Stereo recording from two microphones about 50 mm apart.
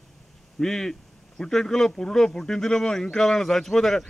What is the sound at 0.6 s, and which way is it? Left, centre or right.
Speech, centre.